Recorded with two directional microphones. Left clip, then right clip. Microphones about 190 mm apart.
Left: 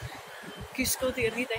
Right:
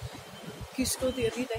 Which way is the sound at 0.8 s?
35° right (ahead or behind).